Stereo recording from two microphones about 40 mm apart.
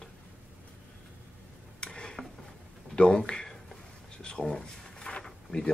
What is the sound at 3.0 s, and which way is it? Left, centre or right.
Speech, left.